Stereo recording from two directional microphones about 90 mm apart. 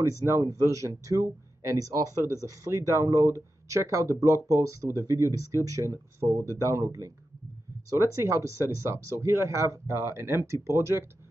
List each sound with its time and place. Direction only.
0.0 s speech: 35° right (ahead or behind)